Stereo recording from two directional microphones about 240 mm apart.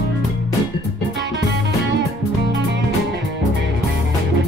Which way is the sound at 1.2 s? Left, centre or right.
Right.